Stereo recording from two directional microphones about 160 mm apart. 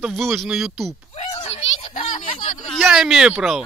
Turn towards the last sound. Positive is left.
turn(degrees=-5)  # may be behind; listen again after turning